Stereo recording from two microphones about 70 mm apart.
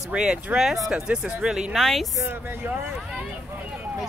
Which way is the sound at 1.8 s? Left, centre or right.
Centre.